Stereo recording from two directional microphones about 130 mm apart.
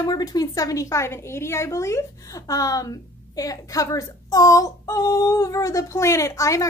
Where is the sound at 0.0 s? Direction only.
30° left (ahead or behind).